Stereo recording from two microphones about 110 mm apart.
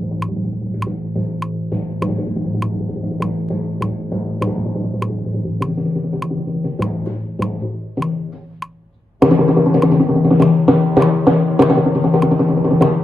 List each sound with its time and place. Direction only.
3.2 s music: centre (ahead or behind)
9.2 s timpani: centre (ahead or behind)